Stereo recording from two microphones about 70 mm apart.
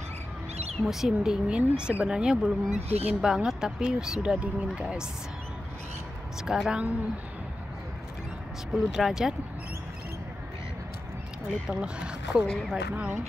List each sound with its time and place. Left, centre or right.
0.8 s speech: centre
6.4 s speech: centre
8.7 s speech: centre
11.7 s speech: centre
12.4 s speech: centre
12.9 s speech: right